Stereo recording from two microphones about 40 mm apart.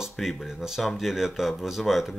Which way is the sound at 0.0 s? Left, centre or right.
Centre.